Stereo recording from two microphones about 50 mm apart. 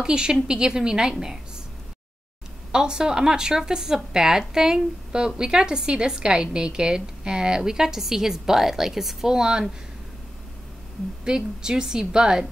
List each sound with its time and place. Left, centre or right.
0.0 s speech: centre
2.7 s speech: centre
11.2 s speech: centre